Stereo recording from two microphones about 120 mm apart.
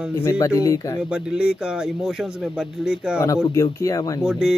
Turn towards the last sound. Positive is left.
turn(degrees=-5)  # may be behind; listen again after turning